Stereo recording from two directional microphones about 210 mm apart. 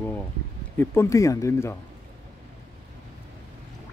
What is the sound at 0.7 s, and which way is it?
Speech, 15° left (ahead or behind).